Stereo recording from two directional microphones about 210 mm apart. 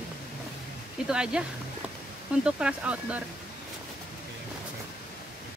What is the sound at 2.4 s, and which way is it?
Speech, 5° right (ahead or behind).